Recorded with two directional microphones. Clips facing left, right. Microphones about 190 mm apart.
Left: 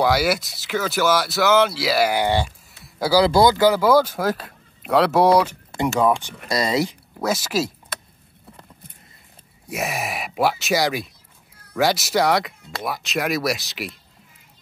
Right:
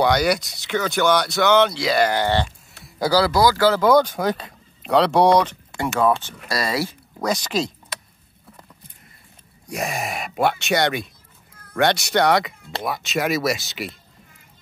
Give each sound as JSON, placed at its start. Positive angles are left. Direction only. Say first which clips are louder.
{"t": 0.0, "sound": "speech", "louder": "right 1 dB", "side_deg": 5}
{"t": 2.8, "sound": "a sound", "louder": "even", "side_deg": 0}
{"t": 3.3, "sound": "speech", "louder": "left 3 dB", "side_deg": 25}
{"t": 3.8, "sound": "speech", "louder": "right 1 dB", "side_deg": 5}
{"t": 7.2, "sound": "speech", "louder": "even", "side_deg": 5}
{"t": 9.7, "sound": "speech", "louder": "even", "side_deg": 5}